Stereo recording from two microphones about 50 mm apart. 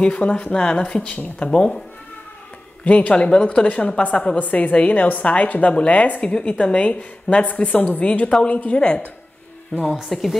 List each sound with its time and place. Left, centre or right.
0.0 s a woman's voice: left
2.8 s a woman's voice: left
3.3 s a woman's voice: centre
10.0 s a woman's voice: centre